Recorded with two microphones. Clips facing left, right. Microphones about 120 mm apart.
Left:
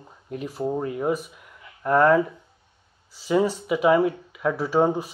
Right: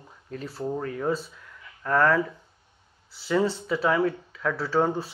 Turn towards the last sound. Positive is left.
turn(degrees=15)  # may be behind; listen again after turning